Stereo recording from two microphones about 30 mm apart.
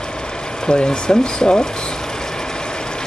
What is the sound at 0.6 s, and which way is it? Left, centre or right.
Speech, left.